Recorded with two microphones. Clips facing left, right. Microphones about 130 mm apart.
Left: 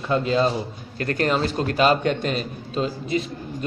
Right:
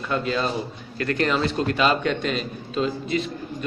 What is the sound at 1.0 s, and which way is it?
A man's voice, 40° left (ahead or behind).